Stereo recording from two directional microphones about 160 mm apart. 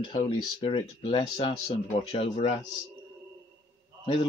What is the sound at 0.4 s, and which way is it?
Speech, 35° left (ahead or behind).